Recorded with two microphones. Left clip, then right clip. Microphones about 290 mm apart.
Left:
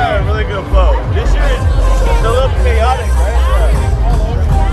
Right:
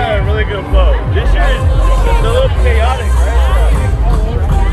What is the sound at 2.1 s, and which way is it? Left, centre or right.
Vehicle, left.